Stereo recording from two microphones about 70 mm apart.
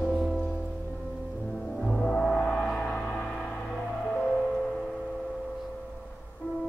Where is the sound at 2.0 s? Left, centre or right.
Centre.